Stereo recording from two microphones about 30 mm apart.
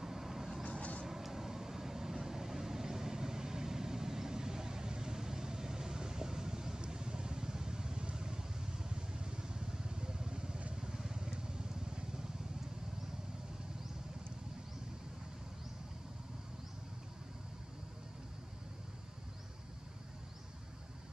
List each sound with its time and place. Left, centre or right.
0.0 s vehicle: centre
0.7 s vehicle: left
1.0 s vehicle: centre
11.2 s vehicle: right